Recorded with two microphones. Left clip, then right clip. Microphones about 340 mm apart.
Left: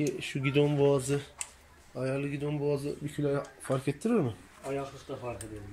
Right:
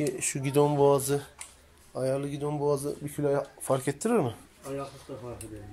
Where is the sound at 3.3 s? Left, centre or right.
Right.